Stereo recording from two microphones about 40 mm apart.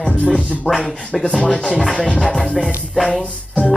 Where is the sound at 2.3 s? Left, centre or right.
Centre.